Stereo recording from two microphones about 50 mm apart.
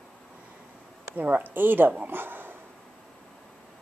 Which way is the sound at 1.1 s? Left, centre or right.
Right.